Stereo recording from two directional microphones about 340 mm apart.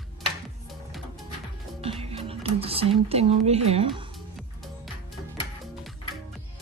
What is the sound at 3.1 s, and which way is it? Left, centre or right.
Speech, centre.